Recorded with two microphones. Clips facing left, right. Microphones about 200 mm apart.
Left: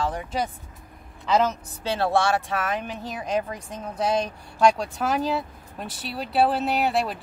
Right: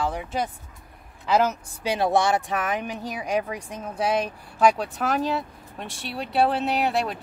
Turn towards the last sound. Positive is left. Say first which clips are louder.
# even
turn(degrees=0)  # may be behind; listen again after turning